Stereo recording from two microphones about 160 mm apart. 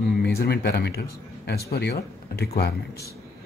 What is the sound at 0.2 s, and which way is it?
A man's voice, 80° left.